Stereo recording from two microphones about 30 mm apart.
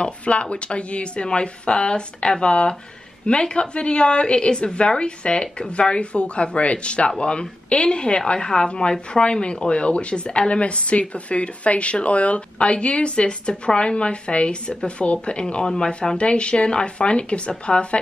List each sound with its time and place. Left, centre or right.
0.0 s a woman's voice: left
15.6 s a woman's voice: left
16.2 s a woman's voice: left